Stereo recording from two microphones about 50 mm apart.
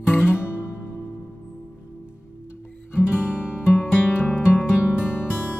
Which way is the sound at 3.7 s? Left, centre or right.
Left.